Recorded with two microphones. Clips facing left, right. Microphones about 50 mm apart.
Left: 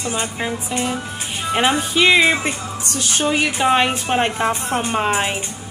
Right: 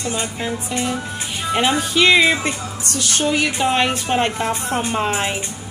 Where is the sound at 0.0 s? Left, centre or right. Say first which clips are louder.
Left 1 dB; left.